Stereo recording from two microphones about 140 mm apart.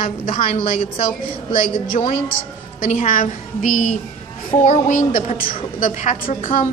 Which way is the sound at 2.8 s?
65° left (ahead or behind).